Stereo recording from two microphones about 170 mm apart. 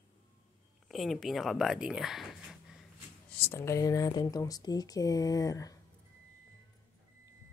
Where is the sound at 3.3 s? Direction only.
10° left (ahead or behind).